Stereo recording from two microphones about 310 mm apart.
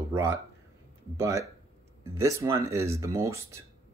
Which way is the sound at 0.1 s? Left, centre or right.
Centre.